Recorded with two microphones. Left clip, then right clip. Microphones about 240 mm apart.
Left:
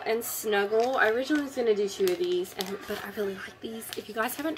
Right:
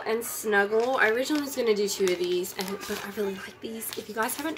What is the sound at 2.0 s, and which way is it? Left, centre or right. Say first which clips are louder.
Speech: right 1 dB; left.